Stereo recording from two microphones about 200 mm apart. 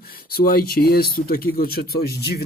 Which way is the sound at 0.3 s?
50° left (ahead or behind).